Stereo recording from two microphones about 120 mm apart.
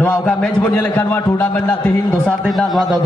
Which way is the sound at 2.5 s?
Centre (ahead or behind).